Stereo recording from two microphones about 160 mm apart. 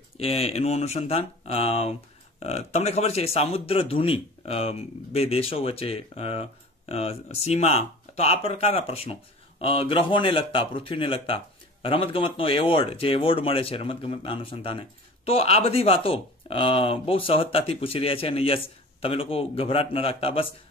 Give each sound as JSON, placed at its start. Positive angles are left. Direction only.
{"t": 0.2, "sound": "speech", "side_deg": 40}